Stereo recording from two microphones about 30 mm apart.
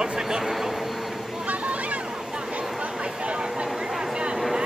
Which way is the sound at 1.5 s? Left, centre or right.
Right.